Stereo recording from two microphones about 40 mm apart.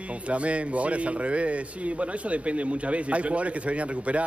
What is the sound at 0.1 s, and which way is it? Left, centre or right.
Speech, right.